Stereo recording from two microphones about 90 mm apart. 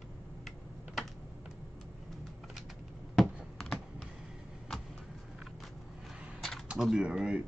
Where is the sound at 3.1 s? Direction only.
Centre (ahead or behind).